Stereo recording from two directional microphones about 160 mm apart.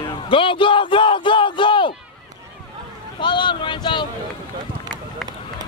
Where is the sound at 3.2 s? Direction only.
30° left (ahead or behind).